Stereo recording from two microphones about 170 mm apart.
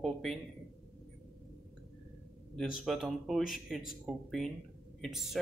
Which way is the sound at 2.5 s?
Centre (ahead or behind).